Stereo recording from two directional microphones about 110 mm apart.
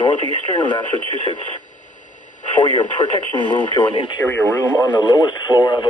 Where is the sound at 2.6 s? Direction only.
45° left (ahead or behind).